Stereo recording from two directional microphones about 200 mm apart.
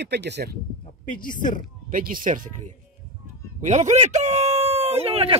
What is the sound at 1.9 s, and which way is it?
Speech, 45° right (ahead or behind).